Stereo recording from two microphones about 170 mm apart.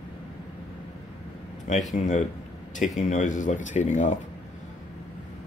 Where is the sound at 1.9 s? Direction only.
45° left (ahead or behind).